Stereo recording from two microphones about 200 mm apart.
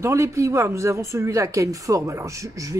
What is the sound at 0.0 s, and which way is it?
A woman's voice, 15° right (ahead or behind).